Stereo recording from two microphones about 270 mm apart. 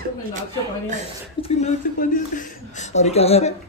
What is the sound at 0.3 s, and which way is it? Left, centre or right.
Speech, right.